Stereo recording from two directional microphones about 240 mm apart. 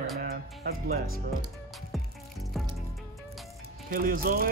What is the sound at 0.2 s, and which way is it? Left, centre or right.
Music, right.